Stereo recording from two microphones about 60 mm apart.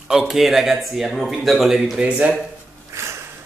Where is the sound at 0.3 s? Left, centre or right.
Centre.